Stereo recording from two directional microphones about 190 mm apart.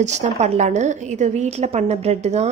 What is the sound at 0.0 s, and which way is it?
A woman's voice, 35° right (ahead or behind).